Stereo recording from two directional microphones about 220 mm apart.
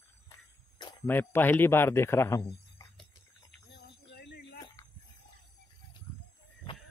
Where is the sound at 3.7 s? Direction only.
50° left (ahead or behind).